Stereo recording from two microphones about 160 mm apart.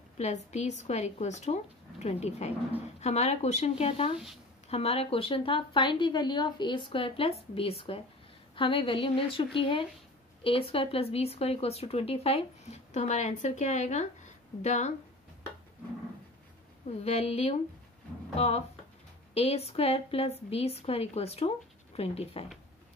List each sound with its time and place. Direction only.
0.2 s speech: 45° left (ahead or behind)
17.0 s speech: 40° left (ahead or behind)